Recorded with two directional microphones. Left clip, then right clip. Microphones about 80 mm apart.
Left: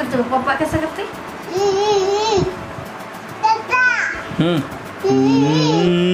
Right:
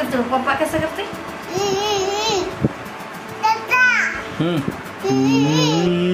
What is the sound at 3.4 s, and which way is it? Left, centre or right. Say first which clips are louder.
Music: left 1 dB; centre.